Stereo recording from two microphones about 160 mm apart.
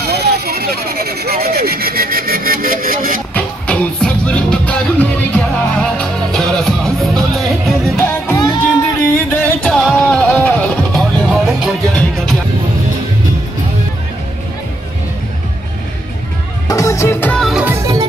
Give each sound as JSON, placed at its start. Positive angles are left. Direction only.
{"t": 0.0, "sound": "vehicle", "side_deg": -85}
{"t": 3.3, "sound": "music", "side_deg": 10}
{"t": 8.0, "sound": "music", "side_deg": 15}
{"t": 16.6, "sound": "music", "side_deg": 20}
{"t": 17.5, "sound": "music", "side_deg": -5}
{"t": 17.7, "sound": "music", "side_deg": -25}